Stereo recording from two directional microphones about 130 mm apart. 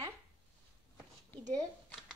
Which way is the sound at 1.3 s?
15° left (ahead or behind).